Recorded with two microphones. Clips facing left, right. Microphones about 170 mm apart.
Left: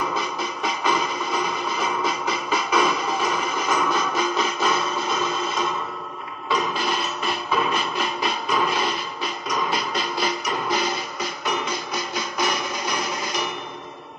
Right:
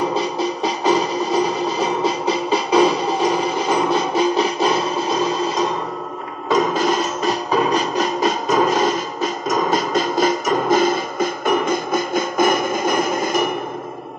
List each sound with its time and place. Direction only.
0.0 s music: 35° right (ahead or behind)